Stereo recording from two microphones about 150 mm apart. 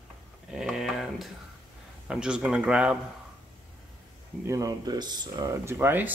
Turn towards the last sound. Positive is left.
turn(degrees=-15)  # may be behind; listen again after turning